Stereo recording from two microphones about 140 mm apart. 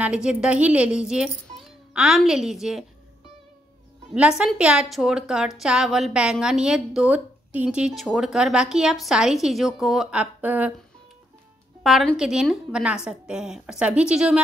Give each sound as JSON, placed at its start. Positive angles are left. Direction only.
{"t": 0.0, "sound": "speech", "side_deg": -5}
{"t": 4.1, "sound": "a woman's voice", "side_deg": -5}
{"t": 11.8, "sound": "a woman's voice", "side_deg": 0}